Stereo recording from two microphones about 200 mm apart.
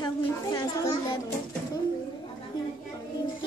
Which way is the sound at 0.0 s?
20° left (ahead or behind).